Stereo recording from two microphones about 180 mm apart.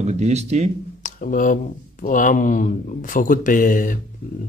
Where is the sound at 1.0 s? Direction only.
50° left (ahead or behind).